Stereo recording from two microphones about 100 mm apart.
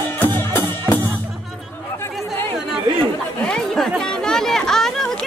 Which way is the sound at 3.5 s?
5° left (ahead or behind).